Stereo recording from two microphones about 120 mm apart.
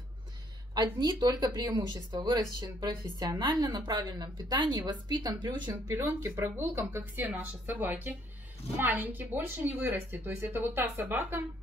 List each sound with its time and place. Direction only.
0.9 s speech: 30° right (ahead or behind)
5.9 s speech: 20° right (ahead or behind)